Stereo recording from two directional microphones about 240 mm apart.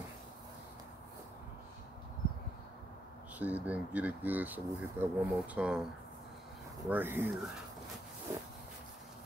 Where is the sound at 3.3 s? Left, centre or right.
Centre.